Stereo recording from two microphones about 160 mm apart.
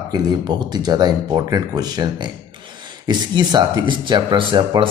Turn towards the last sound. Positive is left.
turn(degrees=-30)  # may be behind; listen again after turning